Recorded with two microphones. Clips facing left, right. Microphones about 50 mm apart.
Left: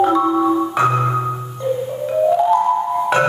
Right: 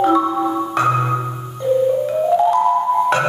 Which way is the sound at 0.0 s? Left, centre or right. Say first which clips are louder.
Left 1 dB; centre.